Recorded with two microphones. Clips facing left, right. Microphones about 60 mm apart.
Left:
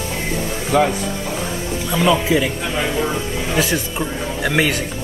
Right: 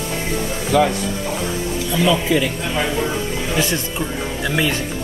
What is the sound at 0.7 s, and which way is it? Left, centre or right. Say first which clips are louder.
Speech: even; centre.